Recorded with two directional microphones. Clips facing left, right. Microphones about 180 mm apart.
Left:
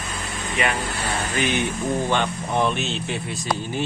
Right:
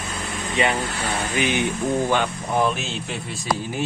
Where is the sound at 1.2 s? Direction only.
15° right (ahead or behind).